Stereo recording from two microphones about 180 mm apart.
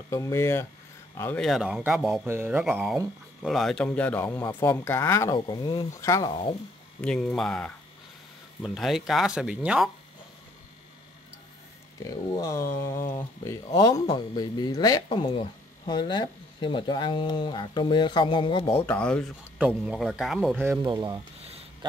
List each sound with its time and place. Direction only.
0.1 s a sound: 15° left (ahead or behind)
1.1 s speech: 10° left (ahead or behind)
4.6 s a sound: 15° left (ahead or behind)
5.3 s speech: 25° left (ahead or behind)
7.0 s speech: 5° left (ahead or behind)
12.0 s speech: 20° left (ahead or behind)
12.8 s a sound: 15° left (ahead or behind)
13.7 s speech: 25° left (ahead or behind)
18.9 s a sound: 5° left (ahead or behind)
19.6 s speech: 5° right (ahead or behind)
20.5 s speech: 10° right (ahead or behind)
20.8 s speech: 25° right (ahead or behind)